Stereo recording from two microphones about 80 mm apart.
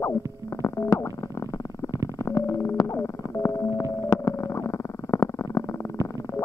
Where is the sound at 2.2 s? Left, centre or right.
Left.